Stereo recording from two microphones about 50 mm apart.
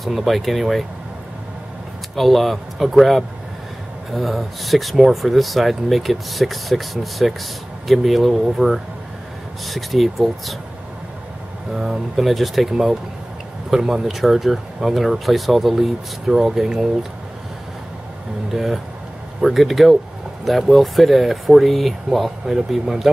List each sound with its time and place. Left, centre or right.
0.0 s speech: centre
2.1 s speech: centre
11.7 s speech: centre
18.5 s speech: centre